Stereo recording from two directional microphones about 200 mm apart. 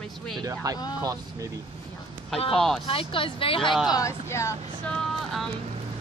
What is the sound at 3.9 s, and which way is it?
Speech, 15° left (ahead or behind).